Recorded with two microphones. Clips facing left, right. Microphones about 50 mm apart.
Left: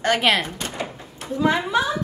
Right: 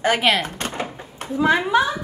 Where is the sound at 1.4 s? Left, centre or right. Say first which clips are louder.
Right 2 dB; right.